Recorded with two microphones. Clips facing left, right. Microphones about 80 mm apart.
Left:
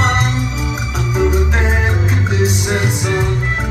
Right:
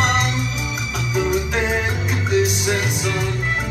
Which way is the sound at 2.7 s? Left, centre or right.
Left.